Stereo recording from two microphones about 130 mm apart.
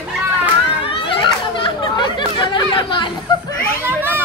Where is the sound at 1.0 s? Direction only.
40° left (ahead or behind).